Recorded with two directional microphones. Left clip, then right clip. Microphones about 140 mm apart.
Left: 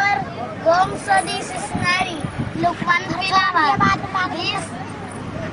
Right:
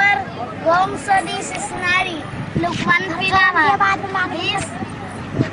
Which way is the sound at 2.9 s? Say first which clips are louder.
Right 4 dB; 5° right (ahead or behind).